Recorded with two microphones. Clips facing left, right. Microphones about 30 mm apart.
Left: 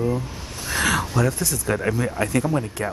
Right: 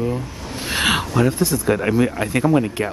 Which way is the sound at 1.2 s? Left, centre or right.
Right.